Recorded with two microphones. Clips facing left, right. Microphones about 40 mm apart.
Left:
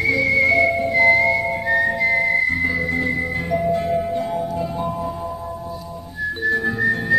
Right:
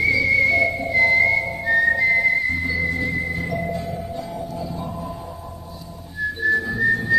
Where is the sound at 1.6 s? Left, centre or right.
Centre.